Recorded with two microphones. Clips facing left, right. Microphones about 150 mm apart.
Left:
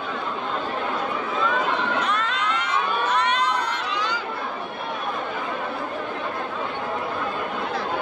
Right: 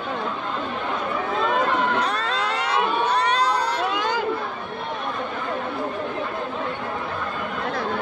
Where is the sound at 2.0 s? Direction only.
35° right (ahead or behind).